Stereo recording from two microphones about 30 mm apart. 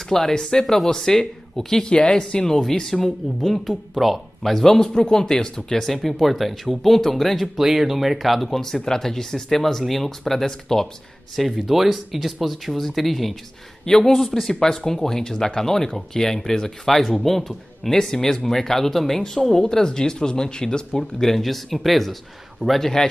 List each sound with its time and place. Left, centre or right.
0.4 s speech: left
2.1 s speech: left
2.8 s speech: centre
3.5 s speech: centre
4.7 s speech: centre
6.0 s speech: centre
7.5 s speech: centre
8.8 s speech: centre
11.5 s speech: centre
16.8 s speech: centre; by 20.8 s left
20.9 s speech: centre
21.4 s speech: centre
22.8 s speech: centre